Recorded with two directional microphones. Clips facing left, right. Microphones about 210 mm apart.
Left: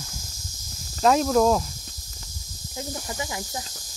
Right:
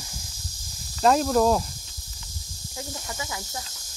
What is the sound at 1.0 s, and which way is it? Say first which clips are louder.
Speech: left 1 dB; centre (ahead or behind).